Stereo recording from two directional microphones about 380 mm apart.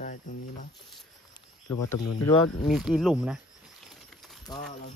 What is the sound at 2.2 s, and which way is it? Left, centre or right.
Speech, centre.